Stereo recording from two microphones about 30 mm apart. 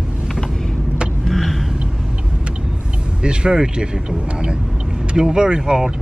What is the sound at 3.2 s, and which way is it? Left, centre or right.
Speech, right.